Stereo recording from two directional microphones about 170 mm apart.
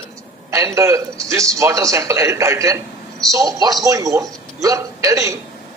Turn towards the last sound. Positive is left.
turn(degrees=-20)  # may be behind; listen again after turning